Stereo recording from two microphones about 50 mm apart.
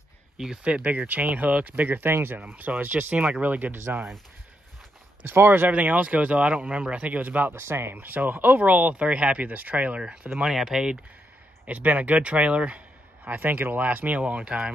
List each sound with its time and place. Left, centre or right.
0.7 s speech: right
2.0 s speech: right
2.5 s speech: right
5.2 s speech: right
5.7 s speech: right
7.5 s speech: right
8.0 s speech: right; by 11.0 s centre
11.6 s speech: right